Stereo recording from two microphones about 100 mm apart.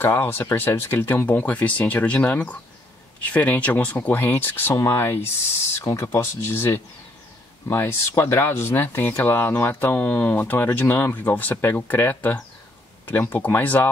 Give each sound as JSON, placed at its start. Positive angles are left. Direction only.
{"t": 0.0, "sound": "speech", "side_deg": 20}